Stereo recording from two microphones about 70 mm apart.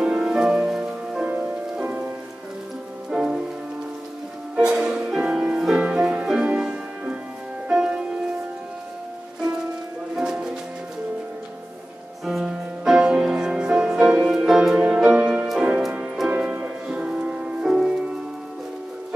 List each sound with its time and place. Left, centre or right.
0.0 s music: centre
1.3 s music: centre
3.1 s rain on surface: centre
4.6 s music: centre
10.1 s music: centre
12.3 s music: centre
16.3 s music: centre